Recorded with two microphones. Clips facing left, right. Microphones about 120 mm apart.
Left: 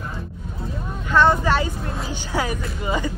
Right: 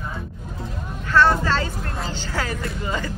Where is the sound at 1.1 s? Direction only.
15° left (ahead or behind).